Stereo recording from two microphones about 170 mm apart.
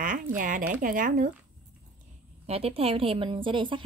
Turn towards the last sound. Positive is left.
turn(degrees=-30)  # may be behind; listen again after turning